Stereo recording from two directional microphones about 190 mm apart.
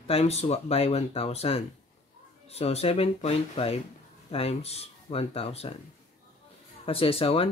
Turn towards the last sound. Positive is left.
turn(degrees=30)  # may be behind; listen again after turning